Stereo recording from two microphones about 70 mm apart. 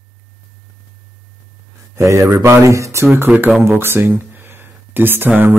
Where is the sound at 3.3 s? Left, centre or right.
Centre.